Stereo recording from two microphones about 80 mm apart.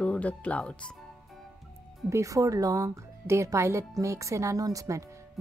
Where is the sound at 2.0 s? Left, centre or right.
Right.